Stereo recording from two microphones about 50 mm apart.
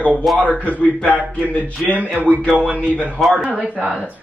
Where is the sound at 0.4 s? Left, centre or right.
Left.